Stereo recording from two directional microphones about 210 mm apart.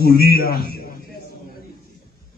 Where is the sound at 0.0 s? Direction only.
45° left (ahead or behind).